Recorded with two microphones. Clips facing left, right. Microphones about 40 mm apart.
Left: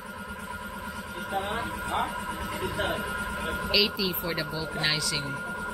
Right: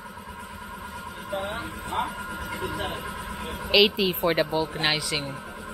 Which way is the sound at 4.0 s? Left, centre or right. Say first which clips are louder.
Right 7 dB; right.